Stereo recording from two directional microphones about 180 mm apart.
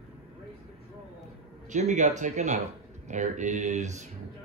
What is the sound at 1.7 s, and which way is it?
Mantra, 40° right (ahead or behind).